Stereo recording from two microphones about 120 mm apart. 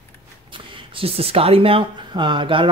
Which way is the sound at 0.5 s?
50° right (ahead or behind).